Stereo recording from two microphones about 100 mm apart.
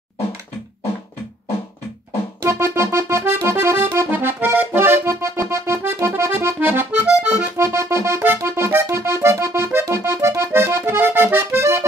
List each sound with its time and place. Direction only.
2.4 s accordion: 25° right (ahead or behind)
7.1 s accordion: 10° right (ahead or behind)
7.5 s accordion: 30° right (ahead or behind)